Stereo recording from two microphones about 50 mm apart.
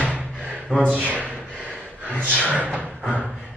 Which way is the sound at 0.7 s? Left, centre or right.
Right.